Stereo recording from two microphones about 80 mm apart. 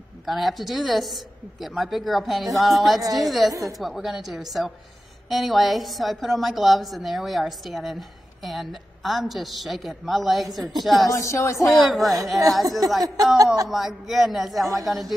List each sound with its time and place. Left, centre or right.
0.2 s a woman's voice: centre
11.1 s speech: left
11.7 s a woman's voice: centre